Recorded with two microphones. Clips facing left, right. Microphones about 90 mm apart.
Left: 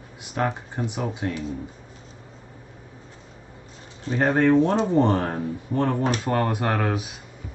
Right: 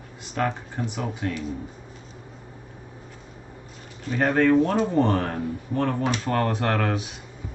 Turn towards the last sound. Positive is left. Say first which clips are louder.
# even
turn(degrees=10)  # may be behind; listen again after turning